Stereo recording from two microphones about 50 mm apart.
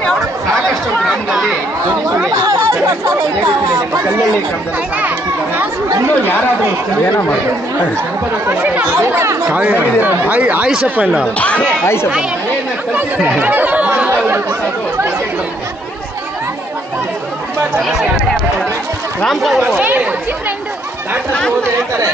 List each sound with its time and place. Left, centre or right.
1.0 s chatter: centre
2.2 s chatter: right
8.9 s speech: right
9.5 s speech: right
11.3 s speech: left
11.8 s speech: left
13.4 s chatter: right
19.2 s speech: centre